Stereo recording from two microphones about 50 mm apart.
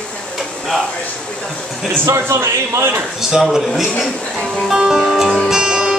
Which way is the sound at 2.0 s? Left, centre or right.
Right.